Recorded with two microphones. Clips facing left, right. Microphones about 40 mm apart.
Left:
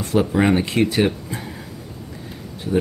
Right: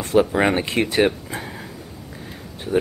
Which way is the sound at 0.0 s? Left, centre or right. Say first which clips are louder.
Right 1 dB; centre.